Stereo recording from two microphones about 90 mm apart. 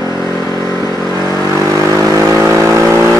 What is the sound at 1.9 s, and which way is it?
Vehicle, 35° right (ahead or behind).